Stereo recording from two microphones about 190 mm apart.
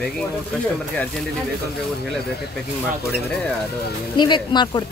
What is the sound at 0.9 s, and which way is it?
Speech, 5° left (ahead or behind).